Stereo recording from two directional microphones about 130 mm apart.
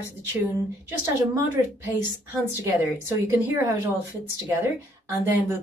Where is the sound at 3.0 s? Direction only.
20° right (ahead or behind).